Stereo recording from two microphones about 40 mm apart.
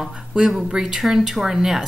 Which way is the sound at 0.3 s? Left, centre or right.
Centre.